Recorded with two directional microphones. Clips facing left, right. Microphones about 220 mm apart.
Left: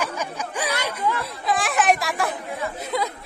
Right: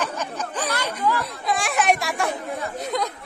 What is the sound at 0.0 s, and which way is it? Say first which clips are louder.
Music: even; 10° left (ahead or behind).